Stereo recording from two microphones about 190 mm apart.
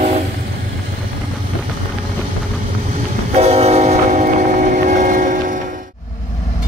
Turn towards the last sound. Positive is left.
turn(degrees=-45)  # may be behind; listen again after turning